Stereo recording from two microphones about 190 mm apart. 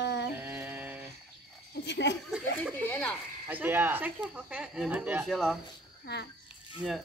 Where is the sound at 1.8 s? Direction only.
65° left (ahead or behind).